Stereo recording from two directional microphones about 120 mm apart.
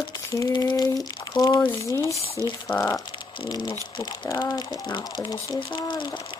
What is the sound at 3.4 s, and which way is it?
Speech, 35° left (ahead or behind).